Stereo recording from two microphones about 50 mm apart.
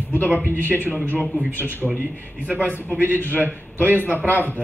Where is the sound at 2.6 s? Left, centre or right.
Left.